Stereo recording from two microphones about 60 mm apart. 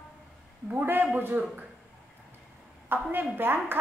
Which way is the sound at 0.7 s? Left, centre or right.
Right.